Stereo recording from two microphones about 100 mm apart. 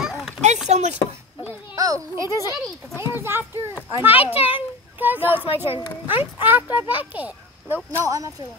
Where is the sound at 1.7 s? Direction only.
35° right (ahead or behind).